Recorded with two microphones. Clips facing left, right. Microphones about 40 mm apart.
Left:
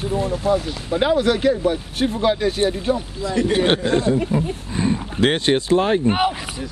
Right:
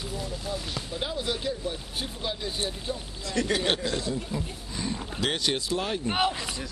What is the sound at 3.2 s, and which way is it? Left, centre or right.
Speech, centre.